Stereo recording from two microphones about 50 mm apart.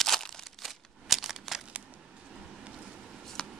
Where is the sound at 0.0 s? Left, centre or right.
Centre.